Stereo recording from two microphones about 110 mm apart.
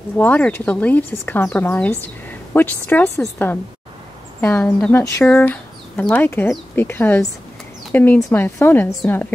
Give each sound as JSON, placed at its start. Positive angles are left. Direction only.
{"t": 0.2, "sound": "speech", "side_deg": 15}